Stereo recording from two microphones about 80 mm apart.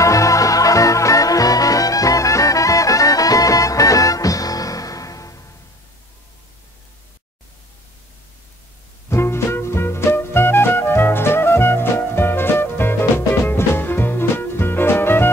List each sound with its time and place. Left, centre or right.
0.0 s music: left
9.1 s music: left